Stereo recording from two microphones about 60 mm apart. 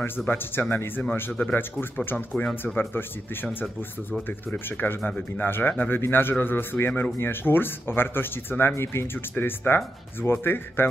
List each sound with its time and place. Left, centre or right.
0.3 s speech: left
2.1 s speech: centre
2.6 s speech: left
3.4 s speech: centre
4.6 s speech: left